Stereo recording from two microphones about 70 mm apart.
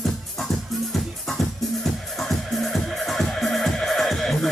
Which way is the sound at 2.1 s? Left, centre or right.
Centre.